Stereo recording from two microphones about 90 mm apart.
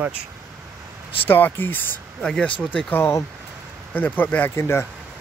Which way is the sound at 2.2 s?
10° left (ahead or behind).